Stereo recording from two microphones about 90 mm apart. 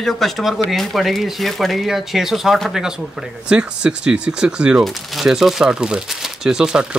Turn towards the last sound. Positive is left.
turn(degrees=-10)  # may be behind; listen again after turning